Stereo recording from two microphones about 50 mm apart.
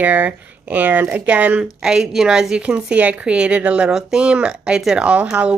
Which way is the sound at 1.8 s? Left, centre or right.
Centre.